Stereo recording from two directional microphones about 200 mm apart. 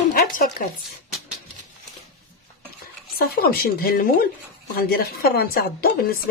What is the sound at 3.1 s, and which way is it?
Speech, 50° left (ahead or behind).